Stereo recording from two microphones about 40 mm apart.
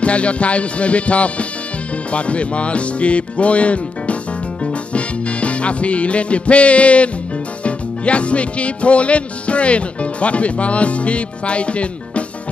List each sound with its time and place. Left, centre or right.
0.0 s music: left